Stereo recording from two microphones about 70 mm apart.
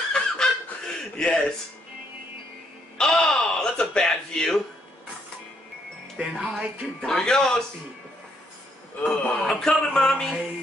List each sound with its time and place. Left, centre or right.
0.1 s snicker: centre
3.1 s music: centre
6.1 s speech: centre
7.0 s music: centre
9.0 s music: centre